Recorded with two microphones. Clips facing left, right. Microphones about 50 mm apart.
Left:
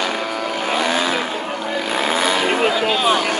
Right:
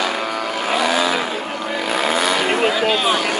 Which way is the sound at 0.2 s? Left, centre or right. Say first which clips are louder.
Even; centre.